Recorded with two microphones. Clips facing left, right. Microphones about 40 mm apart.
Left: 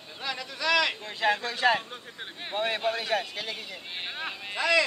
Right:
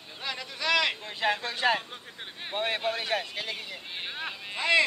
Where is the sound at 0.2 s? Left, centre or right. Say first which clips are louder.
Left 2 dB; right.